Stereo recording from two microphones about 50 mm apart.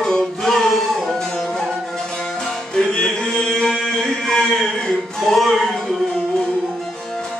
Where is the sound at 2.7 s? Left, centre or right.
Centre.